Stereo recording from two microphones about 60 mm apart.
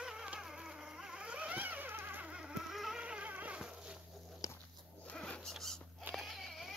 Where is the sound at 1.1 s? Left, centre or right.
Centre; by 2.3 s right.